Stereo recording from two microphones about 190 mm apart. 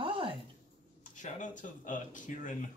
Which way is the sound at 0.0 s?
30° right (ahead or behind).